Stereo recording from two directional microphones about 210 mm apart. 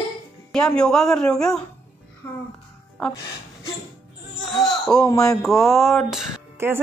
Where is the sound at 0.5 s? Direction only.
5° left (ahead or behind).